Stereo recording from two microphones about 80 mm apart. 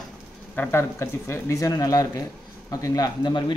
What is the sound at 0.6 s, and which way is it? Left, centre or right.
Speech, left.